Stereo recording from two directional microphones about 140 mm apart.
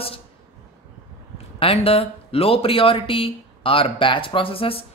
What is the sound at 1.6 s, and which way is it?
Speech, 45° left (ahead or behind).